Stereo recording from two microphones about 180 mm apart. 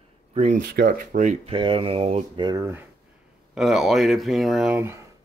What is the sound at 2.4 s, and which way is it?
Speech, 15° right (ahead or behind).